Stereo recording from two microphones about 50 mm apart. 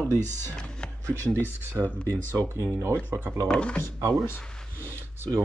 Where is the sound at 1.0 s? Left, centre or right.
Right.